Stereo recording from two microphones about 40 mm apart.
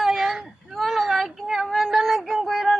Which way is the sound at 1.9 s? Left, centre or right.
Centre.